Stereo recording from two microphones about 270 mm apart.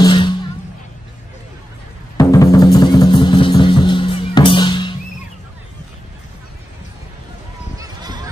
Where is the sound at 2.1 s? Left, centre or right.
Centre.